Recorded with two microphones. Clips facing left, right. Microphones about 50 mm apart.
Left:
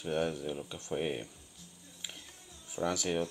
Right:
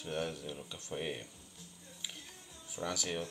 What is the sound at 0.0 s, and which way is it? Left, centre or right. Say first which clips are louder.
Speech: left 5 dB; centre.